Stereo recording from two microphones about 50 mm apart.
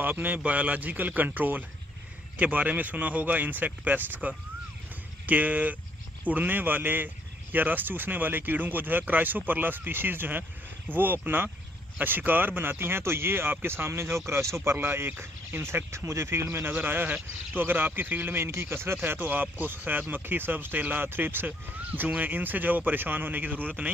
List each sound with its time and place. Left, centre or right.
0.0 s speech: right
14.8 s speech: right
16.5 s speech: right
18.9 s speech: right